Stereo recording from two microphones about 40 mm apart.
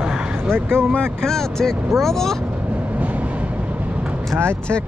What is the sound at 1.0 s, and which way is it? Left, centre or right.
Speech, centre.